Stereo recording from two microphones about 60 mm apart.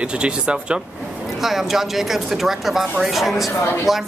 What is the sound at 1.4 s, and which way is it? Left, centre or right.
Speech, centre.